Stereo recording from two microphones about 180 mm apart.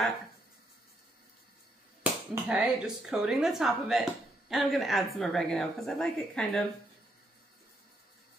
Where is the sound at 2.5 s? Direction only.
5° right (ahead or behind).